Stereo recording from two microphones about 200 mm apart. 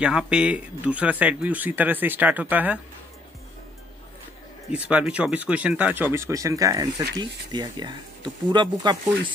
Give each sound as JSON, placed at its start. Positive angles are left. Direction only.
{"t": 0.0, "sound": "speech", "side_deg": -5}
{"t": 4.6, "sound": "speech", "side_deg": -5}